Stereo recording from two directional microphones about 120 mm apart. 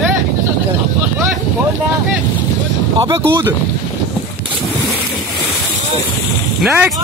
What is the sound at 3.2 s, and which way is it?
Speech, 20° right (ahead or behind).